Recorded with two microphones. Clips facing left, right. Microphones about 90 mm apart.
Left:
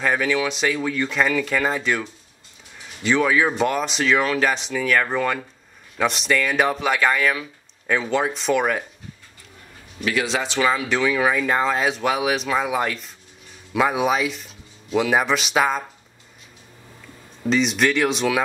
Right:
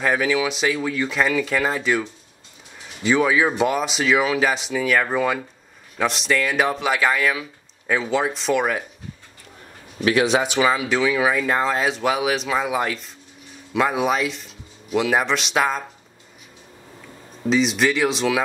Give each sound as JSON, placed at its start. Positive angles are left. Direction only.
{"t": 0.0, "sound": "speech", "side_deg": -5}
{"t": 9.9, "sound": "speech", "side_deg": -25}
{"t": 10.3, "sound": "speech", "side_deg": -10}
{"t": 17.5, "sound": "speech", "side_deg": 0}